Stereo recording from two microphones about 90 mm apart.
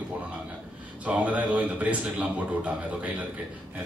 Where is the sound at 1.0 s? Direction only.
15° right (ahead or behind).